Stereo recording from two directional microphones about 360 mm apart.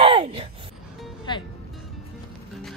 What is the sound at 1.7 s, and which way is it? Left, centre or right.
Music, centre.